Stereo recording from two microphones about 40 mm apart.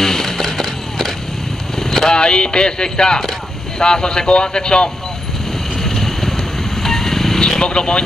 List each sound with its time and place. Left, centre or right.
0.0 s a sound: centre
1.8 s vehicle: centre
2.1 s speech: left
5.9 s vehicle: centre